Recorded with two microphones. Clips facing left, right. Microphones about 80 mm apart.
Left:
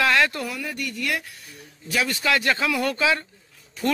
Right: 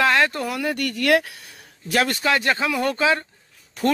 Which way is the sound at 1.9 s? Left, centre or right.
Right.